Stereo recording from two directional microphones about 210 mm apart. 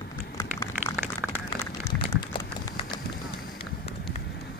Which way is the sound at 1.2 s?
10° right (ahead or behind).